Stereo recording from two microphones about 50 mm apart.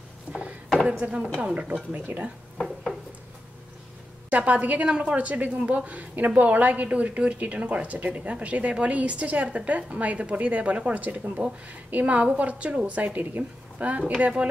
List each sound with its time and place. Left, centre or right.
0.3 s a sound: right
1.1 s a woman's voice: centre
2.6 s dishes: centre
4.3 s a woman's voice: right
11.4 s speech: centre
11.9 s speech: right
13.0 s a woman's voice: right
13.4 s a woman's voice: right